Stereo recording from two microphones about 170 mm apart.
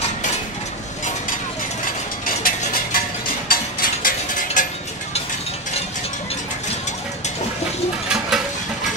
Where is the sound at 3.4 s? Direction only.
55° left (ahead or behind).